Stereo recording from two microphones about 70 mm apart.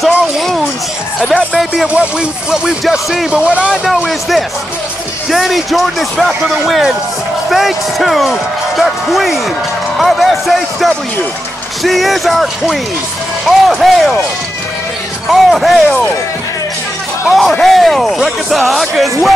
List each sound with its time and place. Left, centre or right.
1.2 s speech: centre
3.3 s speech: centre
15.2 s speech: centre
17.3 s speech: centre